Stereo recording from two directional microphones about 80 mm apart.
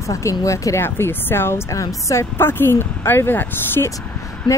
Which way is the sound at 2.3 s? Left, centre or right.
Left.